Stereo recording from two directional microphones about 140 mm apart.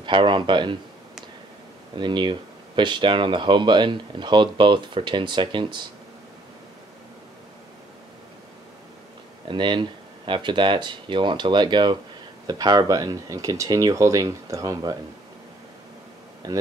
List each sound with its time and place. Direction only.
0.0 s speech: 35° right (ahead or behind)
2.0 s speech: 35° right (ahead or behind)
9.5 s speech: 35° right (ahead or behind)
16.4 s speech: 25° right (ahead or behind)